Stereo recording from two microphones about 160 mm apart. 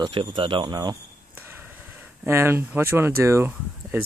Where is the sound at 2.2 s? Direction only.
15° right (ahead or behind).